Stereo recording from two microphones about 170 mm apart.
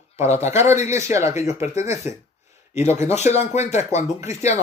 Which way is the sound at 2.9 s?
40° left (ahead or behind).